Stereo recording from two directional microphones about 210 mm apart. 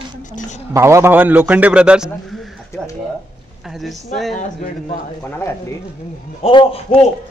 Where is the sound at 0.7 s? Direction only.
15° right (ahead or behind).